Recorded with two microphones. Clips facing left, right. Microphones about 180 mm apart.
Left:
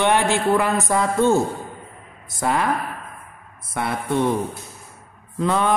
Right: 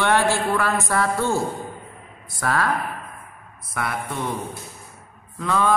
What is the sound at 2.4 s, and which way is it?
Speech, 20° left (ahead or behind).